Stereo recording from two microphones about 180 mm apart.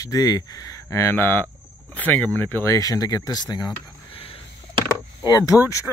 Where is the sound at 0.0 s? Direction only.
20° left (ahead or behind).